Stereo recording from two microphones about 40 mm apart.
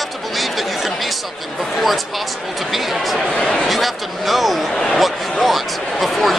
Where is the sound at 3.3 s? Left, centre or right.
Centre.